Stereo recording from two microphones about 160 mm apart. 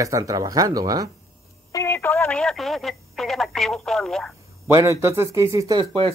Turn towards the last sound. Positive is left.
turn(degrees=-20)  # may be behind; listen again after turning